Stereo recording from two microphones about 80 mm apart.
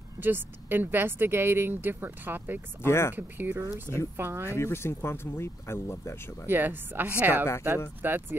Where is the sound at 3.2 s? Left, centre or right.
Right.